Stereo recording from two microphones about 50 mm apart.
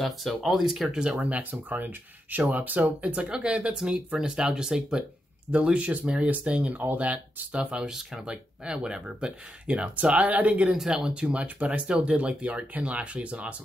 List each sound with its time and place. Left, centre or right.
0.0 s speech: centre
0.9 s speech: centre
1.2 s speech: right; by 5.0 s centre
5.5 s speech: right
7.5 s speech: centre
8.0 s speech: centre
8.3 s speech: centre